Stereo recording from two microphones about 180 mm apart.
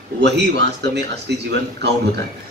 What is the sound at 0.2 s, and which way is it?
Speech, 70° right (ahead or behind).